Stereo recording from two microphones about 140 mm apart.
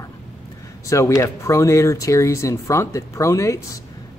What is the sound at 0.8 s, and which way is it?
Speech, 20° left (ahead or behind).